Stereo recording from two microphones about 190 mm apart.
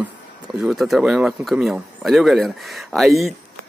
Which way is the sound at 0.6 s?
Centre (ahead or behind).